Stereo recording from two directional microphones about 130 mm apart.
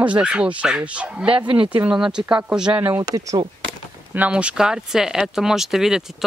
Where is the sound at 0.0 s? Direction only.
10° right (ahead or behind).